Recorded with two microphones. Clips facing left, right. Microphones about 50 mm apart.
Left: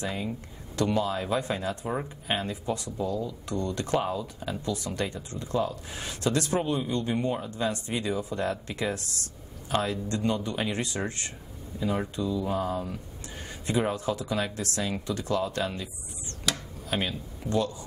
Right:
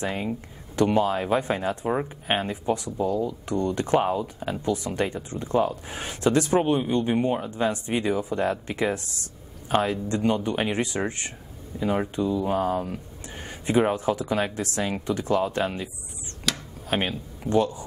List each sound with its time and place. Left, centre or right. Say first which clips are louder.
0.0 s speech: right 4 dB; right
4.0 s speech: right 5 dB; right
16.8 s speech: right 4 dB; right